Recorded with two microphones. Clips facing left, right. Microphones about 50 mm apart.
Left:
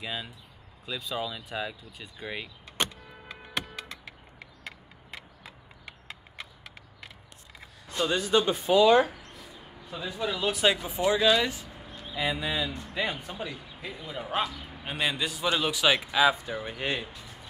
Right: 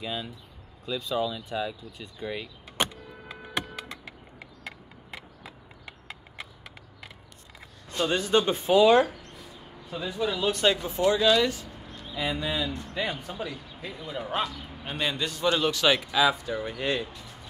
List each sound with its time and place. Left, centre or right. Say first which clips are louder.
0.0 s speech: right 2 dB; centre
2.8 s power windows: right 2 dB; centre
8.1 s speech: right 1 dB; right
8.9 s speech: right 1 dB; centre
16.1 s speech: even; left